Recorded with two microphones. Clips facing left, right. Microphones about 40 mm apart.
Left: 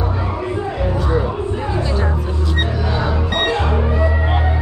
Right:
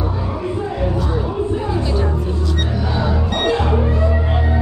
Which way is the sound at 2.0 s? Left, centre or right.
Left.